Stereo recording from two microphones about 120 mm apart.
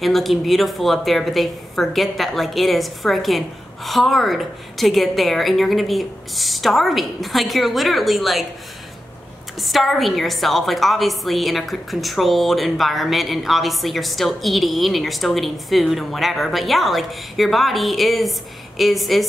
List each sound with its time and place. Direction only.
0.0 s a woman's voice: centre (ahead or behind)
9.6 s a woman's voice: centre (ahead or behind)